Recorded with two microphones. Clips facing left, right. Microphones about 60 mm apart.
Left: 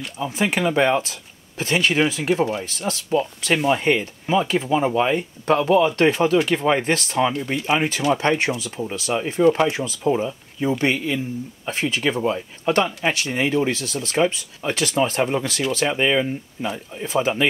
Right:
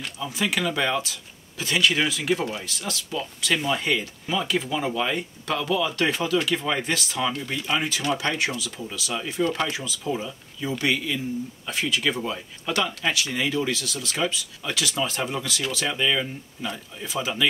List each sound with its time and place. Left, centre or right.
0.2 s speech: left